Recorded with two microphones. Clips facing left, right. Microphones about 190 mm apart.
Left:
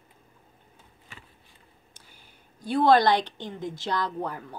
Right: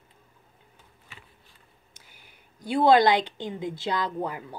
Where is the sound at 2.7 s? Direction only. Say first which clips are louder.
Right 1 dB; 10° right (ahead or behind).